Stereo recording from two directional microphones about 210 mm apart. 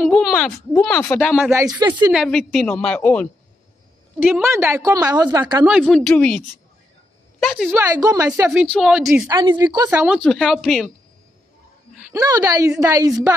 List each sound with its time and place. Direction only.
0.0 s a sound: centre (ahead or behind)
0.8 s speech: 10° left (ahead or behind)
1.3 s a woman's voice: 10° right (ahead or behind)
2.1 s speech: centre (ahead or behind)
4.2 s a woman's voice: 10° right (ahead or behind)
5.6 s a woman's voice: 5° right (ahead or behind)
7.7 s a woman's voice: 15° right (ahead or behind)
9.3 s a woman's voice: 20° right (ahead or behind)
9.8 s a woman's voice: 5° right (ahead or behind)
12.1 s a woman's voice: 15° right (ahead or behind)